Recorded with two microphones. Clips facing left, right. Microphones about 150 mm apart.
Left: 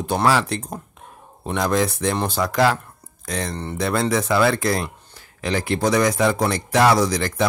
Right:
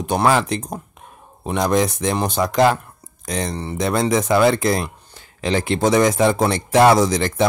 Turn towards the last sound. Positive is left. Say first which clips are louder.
# right 3 dB
turn(degrees=-25)  # may be behind; listen again after turning